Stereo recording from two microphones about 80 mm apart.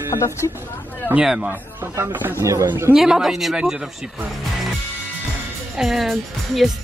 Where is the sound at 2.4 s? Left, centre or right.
Right.